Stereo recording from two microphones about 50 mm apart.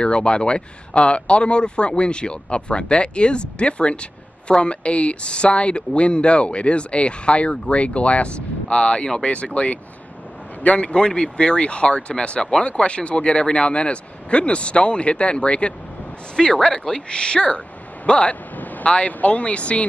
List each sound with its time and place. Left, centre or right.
0.0 s speech: centre
18.6 s a sound: left
18.9 s speech: left